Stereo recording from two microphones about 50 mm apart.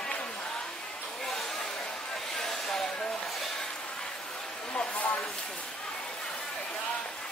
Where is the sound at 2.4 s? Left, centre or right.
Centre.